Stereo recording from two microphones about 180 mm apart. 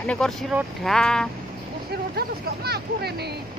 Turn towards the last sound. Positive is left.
turn(degrees=-65)  # may be behind; listen again after turning